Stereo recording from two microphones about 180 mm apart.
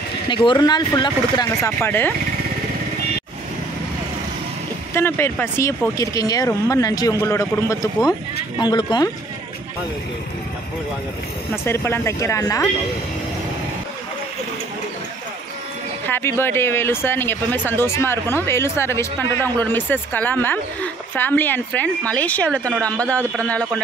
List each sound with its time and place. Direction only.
0.3 s speech: 25° left (ahead or behind); by 2.1 s 10° left (ahead or behind)
4.9 s speech: 15° left (ahead or behind)
11.6 s speech: 10° left (ahead or behind)
16.1 s speech: 10° left (ahead or behind)